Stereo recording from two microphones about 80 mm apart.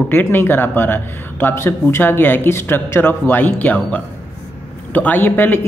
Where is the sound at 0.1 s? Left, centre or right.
Left.